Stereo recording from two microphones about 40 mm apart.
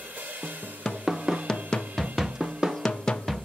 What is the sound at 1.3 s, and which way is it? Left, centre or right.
Music, centre.